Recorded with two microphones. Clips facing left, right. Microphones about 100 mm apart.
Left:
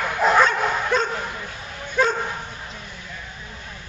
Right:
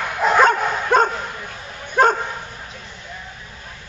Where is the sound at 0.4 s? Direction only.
45° right (ahead or behind).